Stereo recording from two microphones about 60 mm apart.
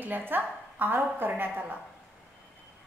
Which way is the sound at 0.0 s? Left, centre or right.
Right.